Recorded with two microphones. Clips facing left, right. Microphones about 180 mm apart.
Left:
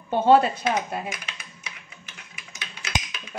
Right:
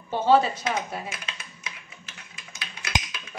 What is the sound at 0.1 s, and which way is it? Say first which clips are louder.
Speech: left 3 dB; 55° left (ahead or behind).